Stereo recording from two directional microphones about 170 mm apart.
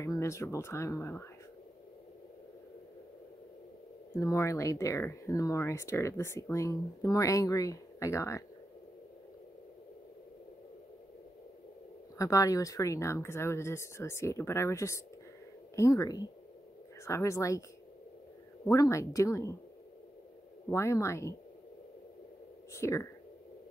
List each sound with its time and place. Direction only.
0.0 s speech: 15° left (ahead or behind)
4.1 s speech: 15° left (ahead or behind)
12.2 s speech: 20° left (ahead or behind)
18.7 s speech: 20° left (ahead or behind)
20.7 s speech: 15° left (ahead or behind)
22.7 s speech: 15° left (ahead or behind)